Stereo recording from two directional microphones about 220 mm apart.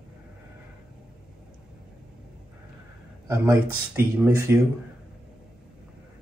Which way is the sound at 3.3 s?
10° right (ahead or behind).